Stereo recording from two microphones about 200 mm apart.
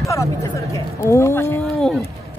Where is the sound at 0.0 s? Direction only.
15° left (ahead or behind).